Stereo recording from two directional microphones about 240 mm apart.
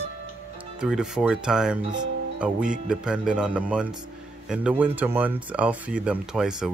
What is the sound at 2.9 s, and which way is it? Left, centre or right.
Speech, centre.